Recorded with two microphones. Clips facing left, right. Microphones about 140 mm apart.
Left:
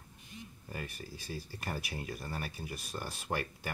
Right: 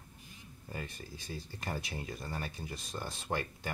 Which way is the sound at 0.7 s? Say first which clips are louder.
Even; 20° right (ahead or behind).